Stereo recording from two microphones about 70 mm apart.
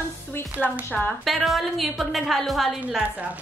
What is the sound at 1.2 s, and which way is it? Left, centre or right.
A woman's voice, centre.